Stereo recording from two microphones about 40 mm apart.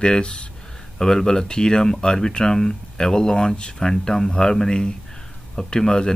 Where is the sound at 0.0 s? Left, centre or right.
Left.